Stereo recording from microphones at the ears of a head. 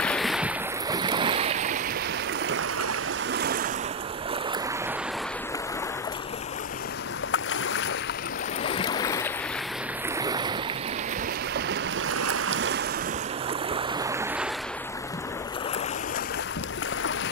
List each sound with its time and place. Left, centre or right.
1.0 s waves: right
8.6 s boat: left
12.1 s boat: right